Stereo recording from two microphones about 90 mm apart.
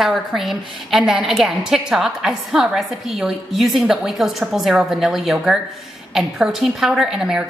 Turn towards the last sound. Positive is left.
turn(degrees=-5)  # may be behind; listen again after turning